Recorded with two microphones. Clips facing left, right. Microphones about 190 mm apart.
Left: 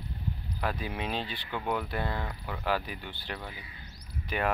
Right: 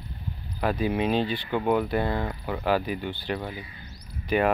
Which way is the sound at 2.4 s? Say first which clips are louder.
Right 6 dB; 15° right (ahead or behind).